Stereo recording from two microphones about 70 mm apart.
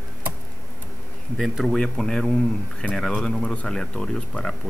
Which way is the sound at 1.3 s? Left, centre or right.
Centre.